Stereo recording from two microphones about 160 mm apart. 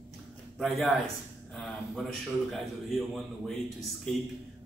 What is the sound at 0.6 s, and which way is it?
A man's voice, centre (ahead or behind).